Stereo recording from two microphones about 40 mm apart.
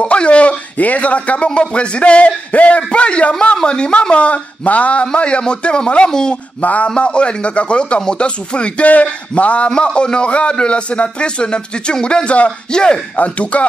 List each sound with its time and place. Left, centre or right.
0.0 s a man's voice: left
6.6 s speech: left
7.0 s a man's voice: left
13.2 s speech: left